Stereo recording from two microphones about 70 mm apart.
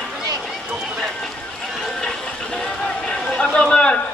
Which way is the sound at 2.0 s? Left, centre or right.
Centre.